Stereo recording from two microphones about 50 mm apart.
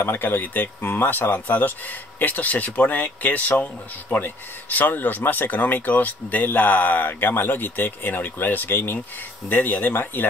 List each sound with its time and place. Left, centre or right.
0.0 s speech: left
0.7 s speech: left